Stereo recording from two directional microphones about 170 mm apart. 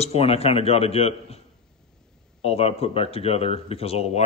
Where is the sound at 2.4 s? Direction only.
35° left (ahead or behind).